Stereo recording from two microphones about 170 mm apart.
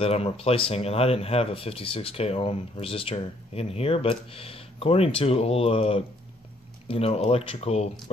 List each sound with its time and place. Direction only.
0.0 s speech: 35° left (ahead or behind)